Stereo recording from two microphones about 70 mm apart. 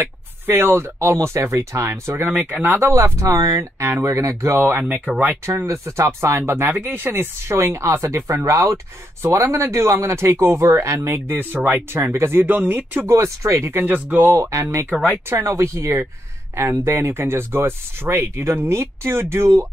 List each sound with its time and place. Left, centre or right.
0.0 s speech: right
2.2 s speech: right
2.9 s speech: right
4.6 s speech: right
5.7 s speech: right
13.1 s speech: right
14.2 s speech: right
14.9 s speech: centre
15.2 s speech: right